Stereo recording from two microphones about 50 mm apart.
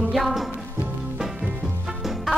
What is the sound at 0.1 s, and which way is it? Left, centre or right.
Music, centre.